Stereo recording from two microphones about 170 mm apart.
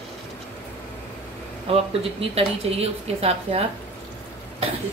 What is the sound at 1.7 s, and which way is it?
Speech, 35° right (ahead or behind).